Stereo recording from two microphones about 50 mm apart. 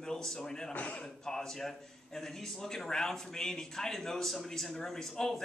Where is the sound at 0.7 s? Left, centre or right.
Left.